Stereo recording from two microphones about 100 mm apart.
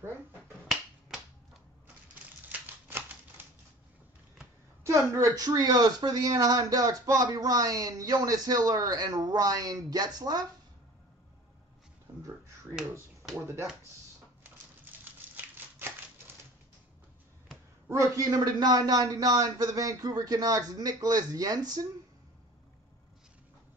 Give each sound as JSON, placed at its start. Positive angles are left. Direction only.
{"t": 2.5, "sound": "typewriter", "side_deg": -15}
{"t": 4.8, "sound": "speech", "side_deg": -30}
{"t": 15.3, "sound": "a sound", "side_deg": -20}
{"t": 17.8, "sound": "speech", "side_deg": -30}